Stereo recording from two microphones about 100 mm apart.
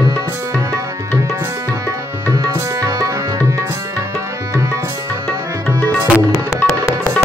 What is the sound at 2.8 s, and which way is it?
Tabla, 35° right (ahead or behind).